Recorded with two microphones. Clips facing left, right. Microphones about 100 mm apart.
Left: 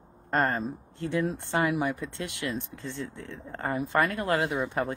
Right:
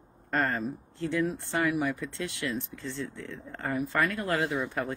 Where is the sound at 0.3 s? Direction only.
30° left (ahead or behind).